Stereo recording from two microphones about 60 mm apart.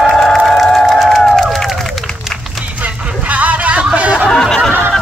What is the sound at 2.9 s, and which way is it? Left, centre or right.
Music, centre.